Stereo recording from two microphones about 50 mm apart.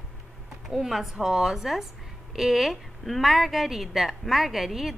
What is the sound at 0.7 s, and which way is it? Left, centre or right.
A woman's voice, centre.